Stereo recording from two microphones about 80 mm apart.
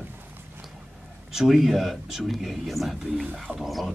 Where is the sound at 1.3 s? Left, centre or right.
Centre.